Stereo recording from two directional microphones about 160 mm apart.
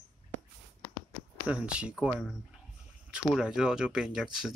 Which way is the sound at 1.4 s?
5° right (ahead or behind).